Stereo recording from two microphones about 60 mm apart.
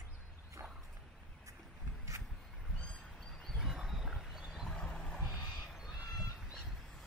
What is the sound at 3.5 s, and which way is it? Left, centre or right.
Wild animals, centre.